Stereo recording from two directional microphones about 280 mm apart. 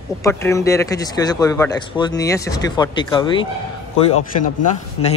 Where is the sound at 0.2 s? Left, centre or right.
Centre.